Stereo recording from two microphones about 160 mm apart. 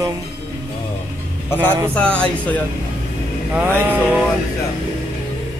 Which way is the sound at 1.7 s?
15° right (ahead or behind).